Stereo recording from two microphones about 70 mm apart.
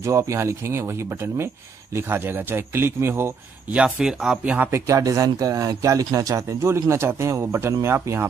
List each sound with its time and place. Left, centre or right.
0.0 s a man's voice: right
3.7 s speech: centre
4.6 s speech: right
6.6 s a man's voice: right